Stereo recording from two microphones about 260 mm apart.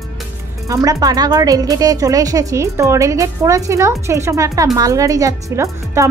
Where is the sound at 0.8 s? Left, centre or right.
Centre.